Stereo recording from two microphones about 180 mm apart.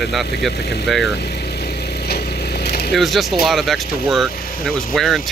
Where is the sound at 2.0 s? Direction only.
60° left (ahead or behind).